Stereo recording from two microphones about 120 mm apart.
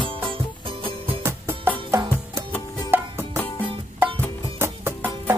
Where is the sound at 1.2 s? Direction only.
20° right (ahead or behind).